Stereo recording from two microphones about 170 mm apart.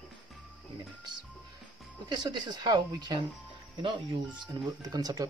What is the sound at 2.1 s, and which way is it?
Speech, 25° right (ahead or behind).